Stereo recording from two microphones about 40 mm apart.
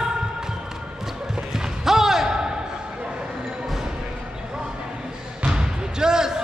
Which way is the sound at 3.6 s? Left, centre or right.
Centre.